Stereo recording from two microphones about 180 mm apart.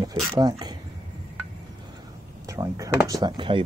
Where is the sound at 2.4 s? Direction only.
20° right (ahead or behind).